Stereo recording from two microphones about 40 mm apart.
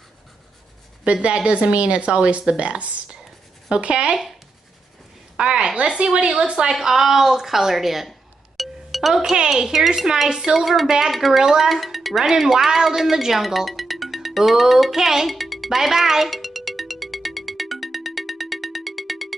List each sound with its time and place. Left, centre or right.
1.0 s a woman's voice: right
5.4 s a woman's voice: right; by 8.1 s centre
8.5 s music: centre
9.1 s a woman's voice: centre
11.1 s music: centre